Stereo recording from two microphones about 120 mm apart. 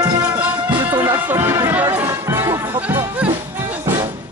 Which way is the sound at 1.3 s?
15° right (ahead or behind).